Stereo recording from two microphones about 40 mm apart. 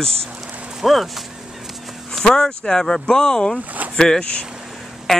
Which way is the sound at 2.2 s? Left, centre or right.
Centre.